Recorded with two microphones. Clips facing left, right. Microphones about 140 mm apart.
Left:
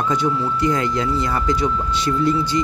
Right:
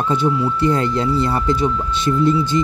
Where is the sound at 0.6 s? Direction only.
30° right (ahead or behind).